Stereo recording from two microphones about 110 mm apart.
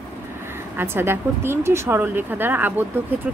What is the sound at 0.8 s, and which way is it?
Speech, 20° right (ahead or behind).